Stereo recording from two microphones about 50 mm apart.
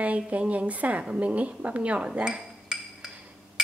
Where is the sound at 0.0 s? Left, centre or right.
Right.